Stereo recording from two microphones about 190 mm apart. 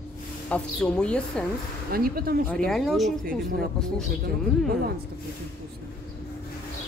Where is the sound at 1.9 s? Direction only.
50° right (ahead or behind).